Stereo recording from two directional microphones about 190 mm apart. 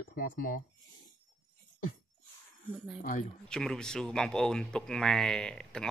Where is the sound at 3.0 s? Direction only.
45° left (ahead or behind).